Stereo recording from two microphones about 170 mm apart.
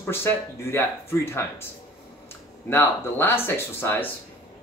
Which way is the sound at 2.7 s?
10° left (ahead or behind).